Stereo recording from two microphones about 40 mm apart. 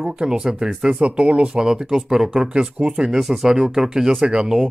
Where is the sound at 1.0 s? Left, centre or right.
Right.